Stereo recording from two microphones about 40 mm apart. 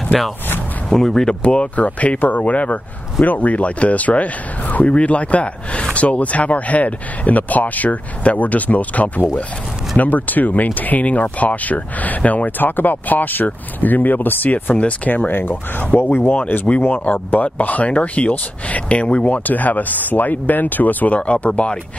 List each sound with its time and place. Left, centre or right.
0.1 s speech: centre
0.8 s speech: centre
1.4 s speech: left
1.8 s speech: left
21.2 s speech: left